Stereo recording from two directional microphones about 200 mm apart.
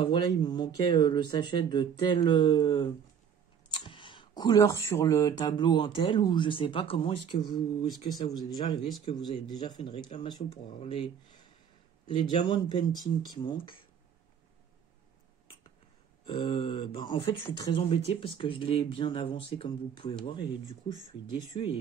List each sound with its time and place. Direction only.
0.0 s speech: 20° left (ahead or behind)
12.2 s speech: 25° left (ahead or behind)
16.3 s speech: 25° left (ahead or behind)